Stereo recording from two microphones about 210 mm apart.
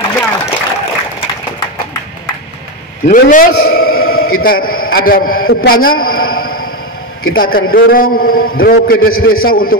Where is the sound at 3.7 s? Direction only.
90° left.